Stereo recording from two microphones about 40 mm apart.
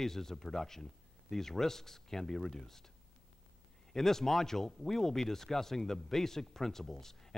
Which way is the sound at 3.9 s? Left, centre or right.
Centre.